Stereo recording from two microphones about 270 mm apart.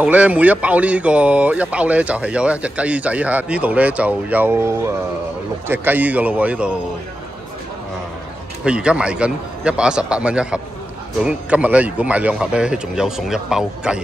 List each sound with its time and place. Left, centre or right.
0.0 s speech: centre
8.6 s speech: centre